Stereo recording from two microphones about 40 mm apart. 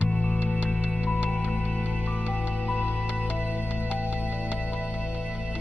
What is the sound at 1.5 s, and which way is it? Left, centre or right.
Music, left.